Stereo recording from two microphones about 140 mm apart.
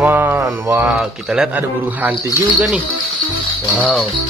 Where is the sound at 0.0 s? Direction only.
10° right (ahead or behind).